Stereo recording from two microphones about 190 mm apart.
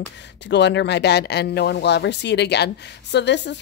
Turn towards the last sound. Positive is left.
turn(degrees=65)  # may be behind; listen again after turning